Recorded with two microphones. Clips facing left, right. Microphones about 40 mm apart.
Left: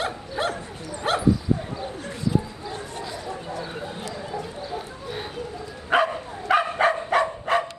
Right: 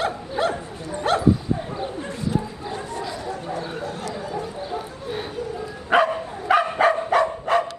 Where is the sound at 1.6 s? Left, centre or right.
Right.